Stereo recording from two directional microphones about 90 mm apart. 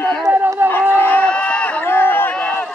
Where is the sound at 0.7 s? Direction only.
25° left (ahead or behind).